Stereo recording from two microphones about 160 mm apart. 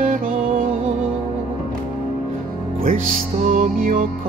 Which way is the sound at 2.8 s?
60° right (ahead or behind).